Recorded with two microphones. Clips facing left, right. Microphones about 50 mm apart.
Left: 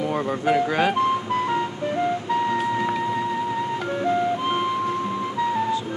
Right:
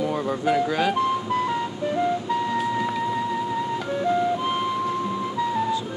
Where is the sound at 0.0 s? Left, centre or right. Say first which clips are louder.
Left 1 dB; left.